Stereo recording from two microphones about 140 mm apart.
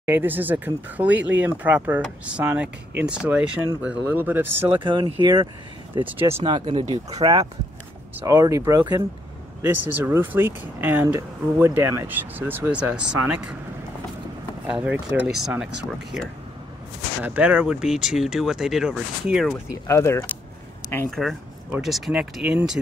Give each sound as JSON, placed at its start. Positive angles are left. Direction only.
{"t": 0.0, "sound": "speech", "side_deg": -15}
{"t": 4.7, "sound": "speech", "side_deg": -35}
{"t": 6.0, "sound": "speech", "side_deg": -15}
{"t": 6.4, "sound": "speech", "side_deg": -35}
{"t": 8.2, "sound": "speech", "side_deg": -20}
{"t": 14.7, "sound": "speech", "side_deg": -10}
{"t": 19.7, "sound": "speech", "side_deg": 20}
{"t": 21.1, "sound": "speech", "side_deg": 0}